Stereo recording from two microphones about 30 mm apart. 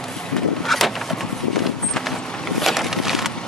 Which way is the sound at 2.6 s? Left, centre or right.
Centre.